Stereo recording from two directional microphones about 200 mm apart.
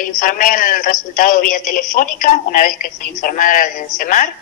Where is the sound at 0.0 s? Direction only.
45° left (ahead or behind).